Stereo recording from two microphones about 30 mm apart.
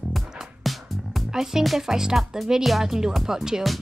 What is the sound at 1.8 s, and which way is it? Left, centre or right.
Music, centre.